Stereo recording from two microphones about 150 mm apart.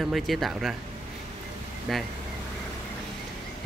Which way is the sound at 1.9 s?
Centre (ahead or behind).